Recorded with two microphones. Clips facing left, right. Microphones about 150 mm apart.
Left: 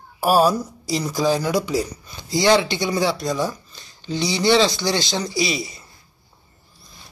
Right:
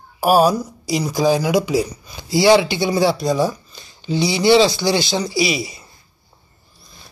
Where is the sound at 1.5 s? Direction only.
20° right (ahead or behind).